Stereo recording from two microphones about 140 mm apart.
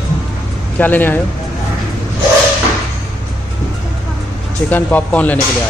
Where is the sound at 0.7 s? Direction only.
15° left (ahead or behind).